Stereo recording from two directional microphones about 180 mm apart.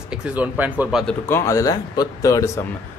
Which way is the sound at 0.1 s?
5° right (ahead or behind).